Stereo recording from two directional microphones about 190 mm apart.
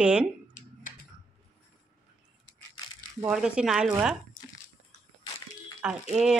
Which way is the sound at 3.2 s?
5° right (ahead or behind).